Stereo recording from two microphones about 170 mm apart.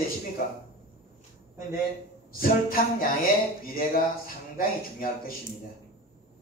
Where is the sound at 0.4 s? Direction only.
55° left (ahead or behind).